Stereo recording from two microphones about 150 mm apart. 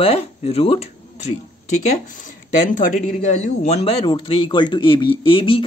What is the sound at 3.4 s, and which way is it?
Speech, 50° left (ahead or behind).